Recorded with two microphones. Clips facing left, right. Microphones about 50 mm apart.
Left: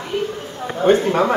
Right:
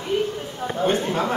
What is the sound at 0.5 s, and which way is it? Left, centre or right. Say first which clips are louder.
Speech: left 7 dB; left.